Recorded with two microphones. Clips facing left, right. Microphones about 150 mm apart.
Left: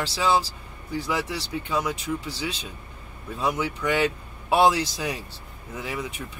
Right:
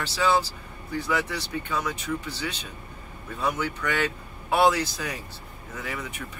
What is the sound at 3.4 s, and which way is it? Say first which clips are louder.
A man's voice: left 2 dB; 15° left (ahead or behind).